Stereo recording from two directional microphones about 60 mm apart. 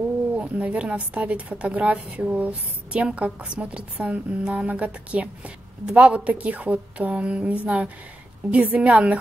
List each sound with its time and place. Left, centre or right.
0.4 s a woman's voice: right